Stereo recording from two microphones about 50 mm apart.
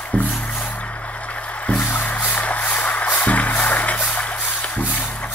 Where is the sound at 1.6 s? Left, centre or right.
Left.